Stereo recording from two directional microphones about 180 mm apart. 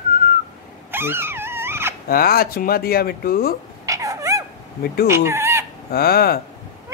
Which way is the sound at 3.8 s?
15° right (ahead or behind).